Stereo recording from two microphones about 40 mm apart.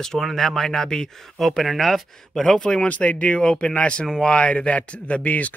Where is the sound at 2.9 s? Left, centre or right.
Left.